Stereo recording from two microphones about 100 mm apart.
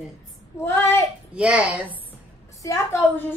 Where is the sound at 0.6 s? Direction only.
25° left (ahead or behind).